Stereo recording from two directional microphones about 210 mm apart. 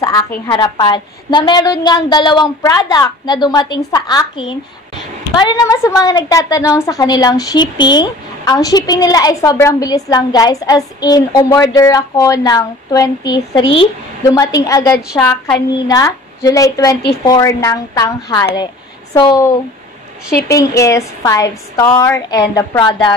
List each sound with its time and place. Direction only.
0.0 s a woman's voice: 15° left (ahead or behind)